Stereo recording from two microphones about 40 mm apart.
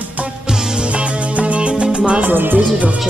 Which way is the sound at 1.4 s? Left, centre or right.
Right.